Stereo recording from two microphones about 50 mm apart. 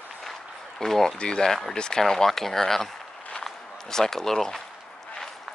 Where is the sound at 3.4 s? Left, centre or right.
Centre.